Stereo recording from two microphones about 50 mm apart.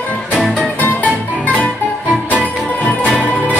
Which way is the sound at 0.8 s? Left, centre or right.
Left.